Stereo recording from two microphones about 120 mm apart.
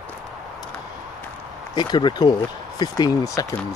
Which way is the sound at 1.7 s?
40° left (ahead or behind).